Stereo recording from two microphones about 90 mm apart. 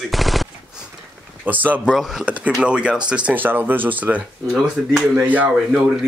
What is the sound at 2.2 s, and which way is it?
Speech, 15° right (ahead or behind).